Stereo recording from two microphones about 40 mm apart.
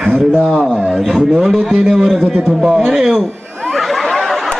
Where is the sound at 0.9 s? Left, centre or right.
Centre.